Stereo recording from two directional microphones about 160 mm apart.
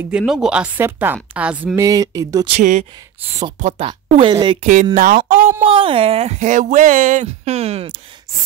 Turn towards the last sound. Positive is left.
turn(degrees=-40)  # may be behind; listen again after turning